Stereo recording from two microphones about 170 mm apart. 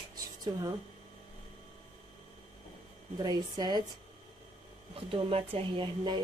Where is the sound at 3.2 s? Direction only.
25° right (ahead or behind).